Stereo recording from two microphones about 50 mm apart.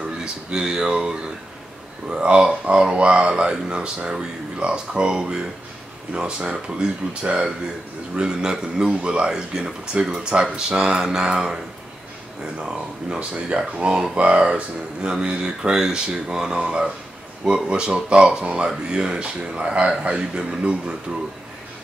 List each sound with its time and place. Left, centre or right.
0.0 s speech: centre
13.1 s speech: centre